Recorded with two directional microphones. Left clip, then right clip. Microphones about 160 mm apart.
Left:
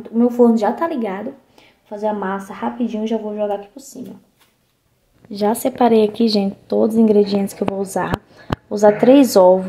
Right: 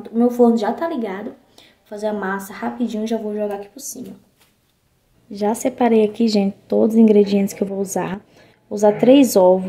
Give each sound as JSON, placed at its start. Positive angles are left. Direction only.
{"t": 0.1, "sound": "a woman's voice", "side_deg": 30}
{"t": 1.6, "sound": "a woman's voice", "side_deg": 25}
{"t": 5.3, "sound": "a woman's voice", "side_deg": -5}
{"t": 8.6, "sound": "a woman's voice", "side_deg": -5}